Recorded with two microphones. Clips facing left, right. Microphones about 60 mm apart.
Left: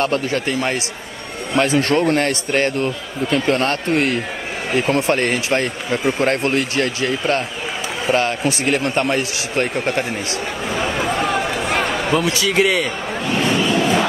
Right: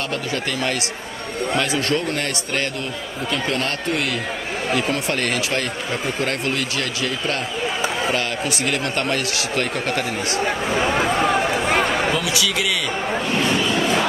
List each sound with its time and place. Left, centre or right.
0.0 s a man's voice: left
10.3 s a sound: right
12.1 s a man's voice: left